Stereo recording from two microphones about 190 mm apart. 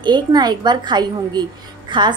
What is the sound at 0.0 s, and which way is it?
A woman's voice, 20° right (ahead or behind).